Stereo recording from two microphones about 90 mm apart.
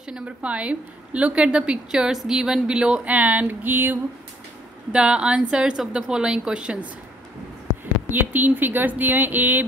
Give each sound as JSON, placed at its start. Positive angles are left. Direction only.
{"t": 0.0, "sound": "a woman's voice", "side_deg": -10}
{"t": 4.9, "sound": "a woman's voice", "side_deg": -10}
{"t": 8.1, "sound": "a woman's voice", "side_deg": -20}